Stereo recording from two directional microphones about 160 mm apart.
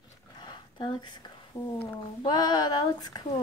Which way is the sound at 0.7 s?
30° left (ahead or behind).